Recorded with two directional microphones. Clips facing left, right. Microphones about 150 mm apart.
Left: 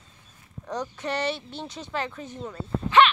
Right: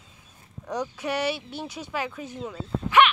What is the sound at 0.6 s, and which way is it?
Speech, 10° right (ahead or behind).